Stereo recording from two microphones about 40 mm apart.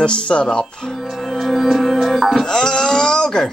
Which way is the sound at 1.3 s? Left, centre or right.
Centre.